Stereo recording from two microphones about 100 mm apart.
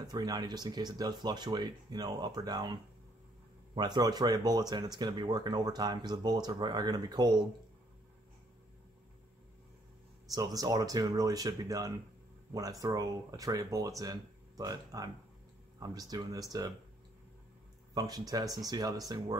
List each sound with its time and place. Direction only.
0.0 s speech: 40° right (ahead or behind)
10.3 s speech: 35° right (ahead or behind)
17.9 s speech: 40° right (ahead or behind)